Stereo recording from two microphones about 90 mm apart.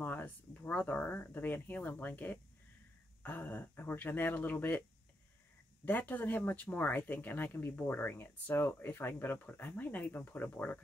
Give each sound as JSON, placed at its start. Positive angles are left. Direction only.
{"t": 0.0, "sound": "speech", "side_deg": 20}
{"t": 5.9, "sound": "speech", "side_deg": 20}